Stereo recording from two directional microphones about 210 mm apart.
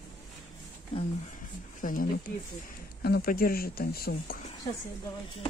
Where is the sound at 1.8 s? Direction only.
40° left (ahead or behind).